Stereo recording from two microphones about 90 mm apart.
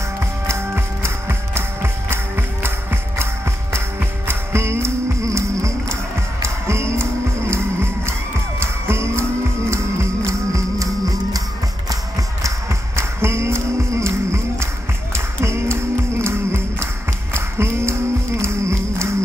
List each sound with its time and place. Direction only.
0.5 s music: 30° right (ahead or behind)
4.3 s music: 30° right (ahead or behind)
12.4 s a sound: 30° right (ahead or behind)
15.1 s music: 30° right (ahead or behind)